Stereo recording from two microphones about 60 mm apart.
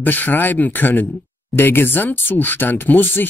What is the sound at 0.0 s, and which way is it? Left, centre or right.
Speech, left.